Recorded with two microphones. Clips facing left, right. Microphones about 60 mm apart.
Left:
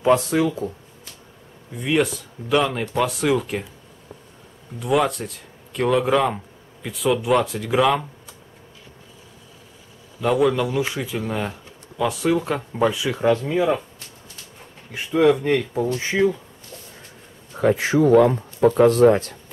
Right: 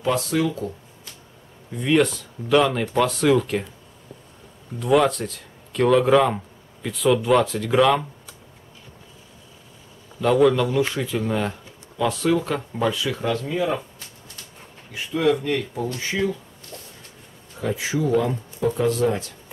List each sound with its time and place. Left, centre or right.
0.0 s speech: left
1.7 s speech: centre
4.7 s speech: centre
10.2 s speech: centre; by 13.7 s left
15.4 s speech: left
17.6 s speech: left